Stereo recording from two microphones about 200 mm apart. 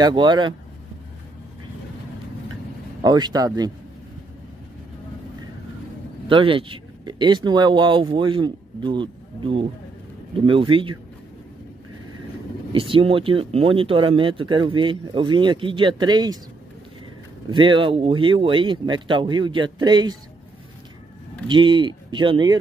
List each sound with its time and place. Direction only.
0.0 s speech: 25° right (ahead or behind)
3.0 s speech: 20° right (ahead or behind)
6.2 s speech: 25° right (ahead or behind)
12.7 s speech: 25° right (ahead or behind)
17.5 s speech: 25° right (ahead or behind)
21.5 s speech: 25° right (ahead or behind)